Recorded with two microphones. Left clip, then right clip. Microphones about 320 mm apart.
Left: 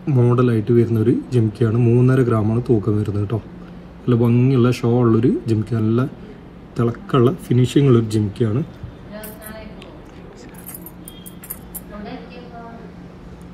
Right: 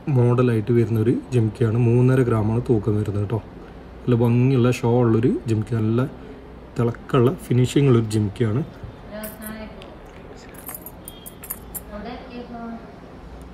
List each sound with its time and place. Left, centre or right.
0.1 s speech: centre